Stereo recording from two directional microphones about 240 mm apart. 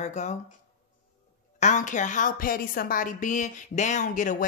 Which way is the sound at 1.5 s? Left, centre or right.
Left.